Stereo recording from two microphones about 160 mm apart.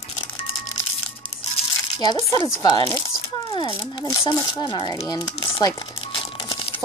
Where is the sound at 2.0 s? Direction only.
25° left (ahead or behind).